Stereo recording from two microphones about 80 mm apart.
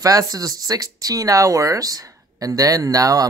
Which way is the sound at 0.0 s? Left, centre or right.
Right.